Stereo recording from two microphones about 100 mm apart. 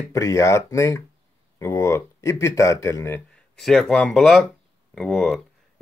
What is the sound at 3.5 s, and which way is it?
Speech, 5° left (ahead or behind).